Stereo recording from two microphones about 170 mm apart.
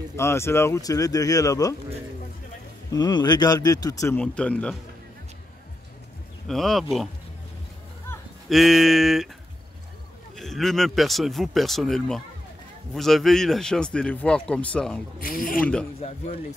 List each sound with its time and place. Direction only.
0.1 s speech: 15° left (ahead or behind)
2.9 s speech: 25° left (ahead or behind)
4.2 s speech: 5° left (ahead or behind)
6.4 s a man's voice: centre (ahead or behind)
8.5 s a man's voice: centre (ahead or behind)
10.3 s a man's voice: centre (ahead or behind)
15.1 s speech: 55° left (ahead or behind)